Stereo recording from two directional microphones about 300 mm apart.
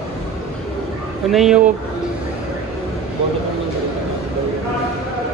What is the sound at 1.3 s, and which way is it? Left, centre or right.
Speech, centre.